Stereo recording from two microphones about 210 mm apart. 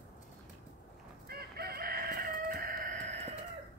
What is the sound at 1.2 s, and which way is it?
Chicken, 50° right (ahead or behind).